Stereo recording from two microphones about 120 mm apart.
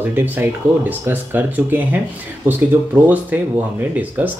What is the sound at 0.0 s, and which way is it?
Speech, 15° right (ahead or behind).